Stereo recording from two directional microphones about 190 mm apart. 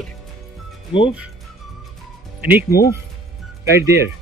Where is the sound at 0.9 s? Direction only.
30° left (ahead or behind).